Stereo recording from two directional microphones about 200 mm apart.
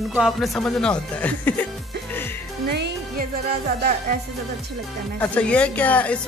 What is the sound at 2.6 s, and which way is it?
Music, 50° right (ahead or behind).